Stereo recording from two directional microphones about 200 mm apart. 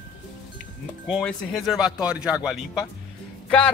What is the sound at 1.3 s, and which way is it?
Speech, centre (ahead or behind).